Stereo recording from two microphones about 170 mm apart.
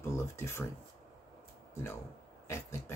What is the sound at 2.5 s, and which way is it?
Speech, 15° left (ahead or behind).